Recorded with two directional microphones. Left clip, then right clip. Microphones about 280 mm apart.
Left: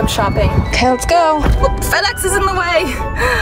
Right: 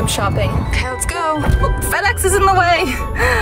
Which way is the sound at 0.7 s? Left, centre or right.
Centre.